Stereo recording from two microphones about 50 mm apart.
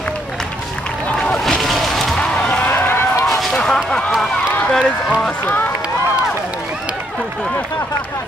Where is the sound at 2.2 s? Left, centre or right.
Left.